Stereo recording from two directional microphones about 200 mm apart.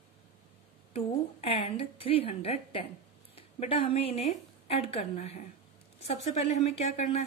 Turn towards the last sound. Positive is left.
turn(degrees=30)  # may be behind; listen again after turning